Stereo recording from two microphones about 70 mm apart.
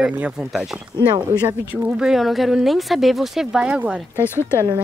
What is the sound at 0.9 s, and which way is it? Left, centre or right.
Speech, right.